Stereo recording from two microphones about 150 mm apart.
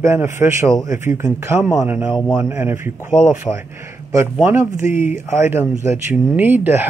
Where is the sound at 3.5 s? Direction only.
30° left (ahead or behind).